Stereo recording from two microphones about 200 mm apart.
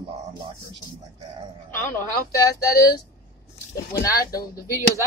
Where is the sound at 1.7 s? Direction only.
10° left (ahead or behind).